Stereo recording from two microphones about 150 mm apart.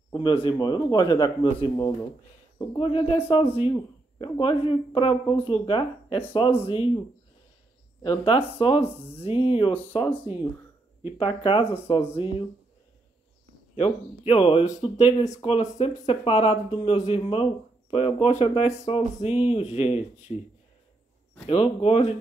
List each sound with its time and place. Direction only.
0.1 s a man's voice: 35° left (ahead or behind)
2.7 s speech: 35° left (ahead or behind)
8.0 s speech: 35° left (ahead or behind)
11.1 s speech: 35° left (ahead or behind)
13.7 s speech: 40° left (ahead or behind)
21.5 s speech: 40° left (ahead or behind)